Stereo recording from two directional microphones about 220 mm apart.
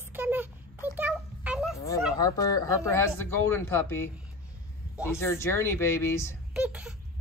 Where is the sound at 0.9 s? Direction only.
5° right (ahead or behind).